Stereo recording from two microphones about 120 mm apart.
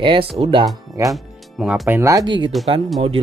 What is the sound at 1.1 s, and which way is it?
Speech, 5° right (ahead or behind).